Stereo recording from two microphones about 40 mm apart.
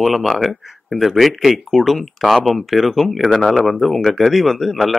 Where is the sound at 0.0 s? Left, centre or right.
Centre.